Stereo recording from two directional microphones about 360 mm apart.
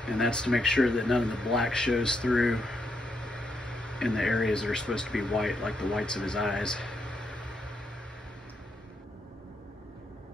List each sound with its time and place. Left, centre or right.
0.0 s speech: centre